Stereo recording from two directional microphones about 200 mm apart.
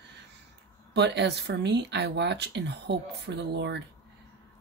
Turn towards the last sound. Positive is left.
turn(degrees=-60)  # may be behind; listen again after turning